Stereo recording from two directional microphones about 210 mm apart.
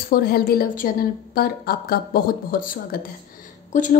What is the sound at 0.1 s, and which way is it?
A woman's voice, 45° left (ahead or behind).